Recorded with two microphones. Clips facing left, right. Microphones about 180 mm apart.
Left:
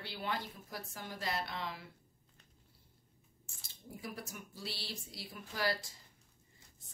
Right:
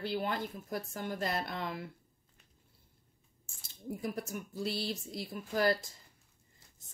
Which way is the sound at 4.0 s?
50° right (ahead or behind).